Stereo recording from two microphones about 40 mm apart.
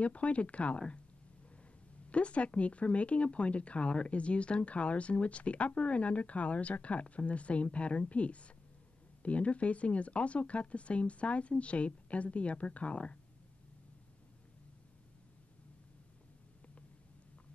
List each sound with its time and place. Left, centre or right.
0.0 s speech: left
2.0 s speech: left